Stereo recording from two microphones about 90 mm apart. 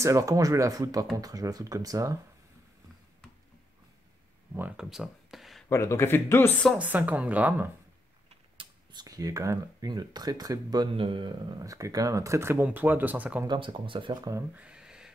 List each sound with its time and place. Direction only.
0.0 s speech: 40° right (ahead or behind)
4.7 s a sound: 5° right (ahead or behind)
5.7 s speech: 30° left (ahead or behind)
6.8 s a woman's voice: 15° right (ahead or behind)
8.9 s speech: 45° right (ahead or behind)
11.0 s speech: 70° right (ahead or behind)
11.5 s speech: 40° right (ahead or behind); by 13.4 s 20° right (ahead or behind)
13.5 s speech: 70° right (ahead or behind)
14.5 s a sound: 10° right (ahead or behind)